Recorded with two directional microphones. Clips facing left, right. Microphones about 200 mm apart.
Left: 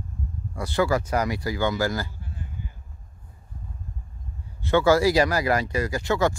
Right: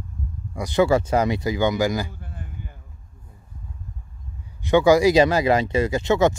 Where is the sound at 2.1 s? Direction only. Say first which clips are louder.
Right 1 dB; 55° right (ahead or behind).